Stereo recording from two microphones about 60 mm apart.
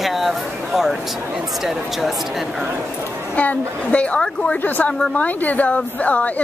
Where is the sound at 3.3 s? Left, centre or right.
Left.